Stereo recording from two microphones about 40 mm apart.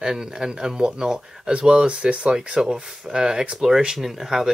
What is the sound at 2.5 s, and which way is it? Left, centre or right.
Speech, centre.